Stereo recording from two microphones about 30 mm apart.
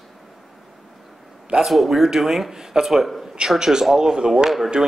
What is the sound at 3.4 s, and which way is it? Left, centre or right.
A man's voice, centre.